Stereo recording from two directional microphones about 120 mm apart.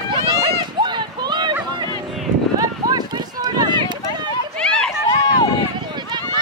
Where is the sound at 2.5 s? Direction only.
35° right (ahead or behind).